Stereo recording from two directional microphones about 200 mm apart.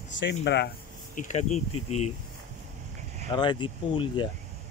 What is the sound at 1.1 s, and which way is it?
Speech, 35° left (ahead or behind).